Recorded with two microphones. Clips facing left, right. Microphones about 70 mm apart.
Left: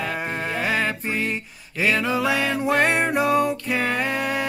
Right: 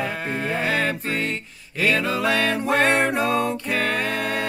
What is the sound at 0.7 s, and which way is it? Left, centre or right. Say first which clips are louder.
Music: left 1 dB; centre.